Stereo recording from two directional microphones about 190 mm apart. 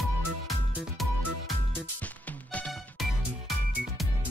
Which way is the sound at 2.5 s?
5° left (ahead or behind).